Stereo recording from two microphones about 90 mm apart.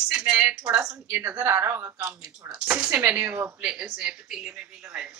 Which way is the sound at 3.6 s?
10° right (ahead or behind).